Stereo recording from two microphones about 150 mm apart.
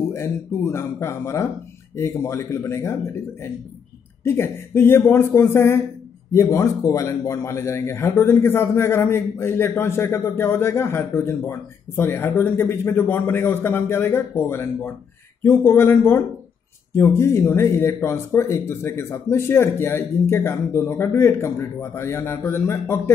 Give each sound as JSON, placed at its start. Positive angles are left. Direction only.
{"t": 0.1, "sound": "a man's voice", "side_deg": 15}
{"t": 4.2, "sound": "a man's voice", "side_deg": 15}